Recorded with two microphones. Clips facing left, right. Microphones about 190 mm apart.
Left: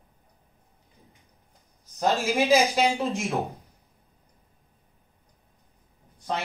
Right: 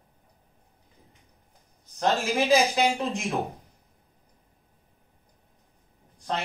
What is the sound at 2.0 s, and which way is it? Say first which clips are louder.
Speech: left 1 dB; centre (ahead or behind).